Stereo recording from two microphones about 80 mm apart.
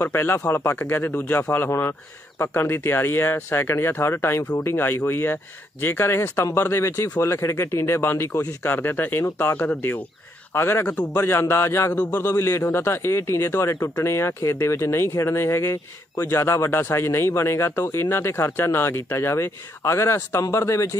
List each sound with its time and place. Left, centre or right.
0.0 s a man's voice: left